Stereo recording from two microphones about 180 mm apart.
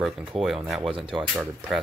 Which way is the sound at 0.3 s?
Centre (ahead or behind).